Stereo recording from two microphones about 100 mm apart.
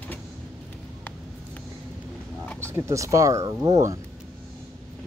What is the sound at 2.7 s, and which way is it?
Speech, 25° right (ahead or behind).